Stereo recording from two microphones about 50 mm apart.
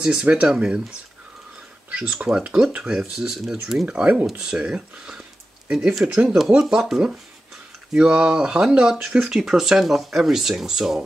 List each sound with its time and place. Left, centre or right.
0.0 s speech: centre
1.9 s speech: right
2.8 s speech: centre
4.0 s speech: right
4.4 s speech: centre
7.9 s speech: right; by 11.0 s centre